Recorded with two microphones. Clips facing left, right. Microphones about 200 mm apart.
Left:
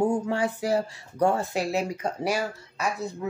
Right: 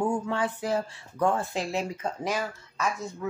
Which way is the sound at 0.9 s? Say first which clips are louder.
Left 2 dB; 40° left (ahead or behind).